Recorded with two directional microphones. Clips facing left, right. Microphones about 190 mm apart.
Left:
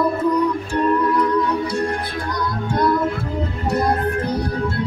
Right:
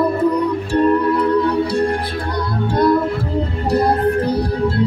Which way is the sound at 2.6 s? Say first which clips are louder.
Right 4 dB; 30° right (ahead or behind).